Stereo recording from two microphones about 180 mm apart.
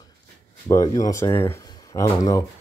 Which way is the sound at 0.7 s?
20° left (ahead or behind).